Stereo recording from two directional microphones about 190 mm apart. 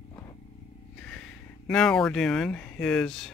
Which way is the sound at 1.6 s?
5° left (ahead or behind).